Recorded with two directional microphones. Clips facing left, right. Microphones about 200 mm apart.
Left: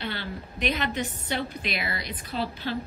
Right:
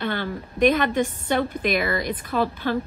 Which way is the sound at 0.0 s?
50° right (ahead or behind).